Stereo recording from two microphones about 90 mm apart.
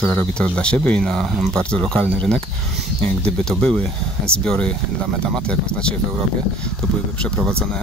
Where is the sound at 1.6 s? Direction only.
10° left (ahead or behind).